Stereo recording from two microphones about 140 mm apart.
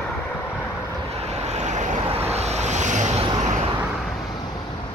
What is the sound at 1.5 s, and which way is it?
Vehicle, 55° right (ahead or behind).